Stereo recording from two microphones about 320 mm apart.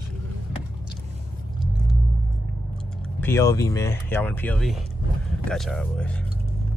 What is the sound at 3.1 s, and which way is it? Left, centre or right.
Speech, centre.